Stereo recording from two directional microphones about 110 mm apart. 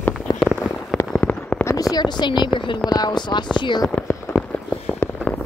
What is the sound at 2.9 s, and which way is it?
Speech, 40° left (ahead or behind).